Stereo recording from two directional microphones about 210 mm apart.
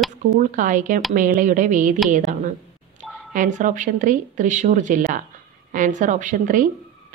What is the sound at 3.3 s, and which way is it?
A woman's voice, 40° right (ahead or behind).